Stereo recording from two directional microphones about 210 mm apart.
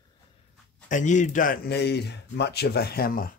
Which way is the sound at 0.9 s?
35° left (ahead or behind).